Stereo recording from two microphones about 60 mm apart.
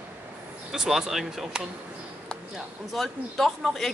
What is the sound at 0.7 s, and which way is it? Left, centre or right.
Speech, centre.